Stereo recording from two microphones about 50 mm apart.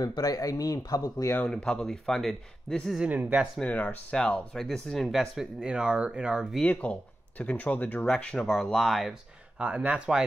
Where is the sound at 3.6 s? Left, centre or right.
Left.